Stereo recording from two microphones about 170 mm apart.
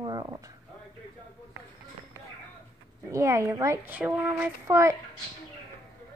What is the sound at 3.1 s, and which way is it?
A woman's voice, 15° right (ahead or behind).